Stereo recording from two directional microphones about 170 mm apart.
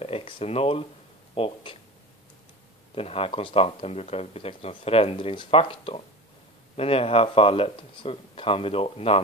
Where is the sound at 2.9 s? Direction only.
35° left (ahead or behind).